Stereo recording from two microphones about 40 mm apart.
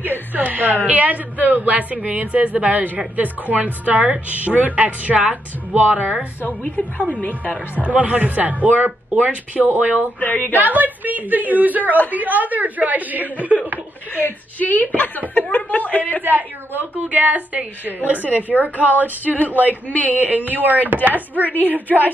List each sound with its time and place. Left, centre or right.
0.3 s a woman's voice: right
5.8 s a woman's voice: right
6.4 s a woman's voice: left
7.7 s a woman's voice: right
10.2 s speech: left
10.6 s a woman's voice: right
14.1 s speech: left
16.3 s a woman's voice: right
19.3 s a woman's voice: left
20.2 s a woman's voice: right
21.8 s speech: left